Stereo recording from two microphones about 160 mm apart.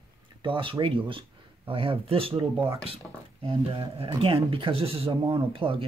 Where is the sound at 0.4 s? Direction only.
30° right (ahead or behind).